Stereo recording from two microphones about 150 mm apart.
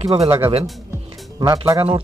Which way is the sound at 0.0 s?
45° right (ahead or behind).